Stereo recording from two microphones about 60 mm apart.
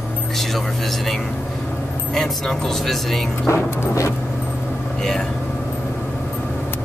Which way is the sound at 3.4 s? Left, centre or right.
Left.